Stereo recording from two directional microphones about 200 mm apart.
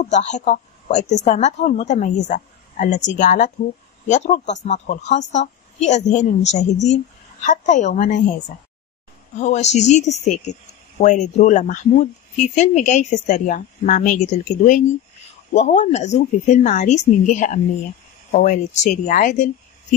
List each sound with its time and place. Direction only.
0.1 s speech: 35° left (ahead or behind)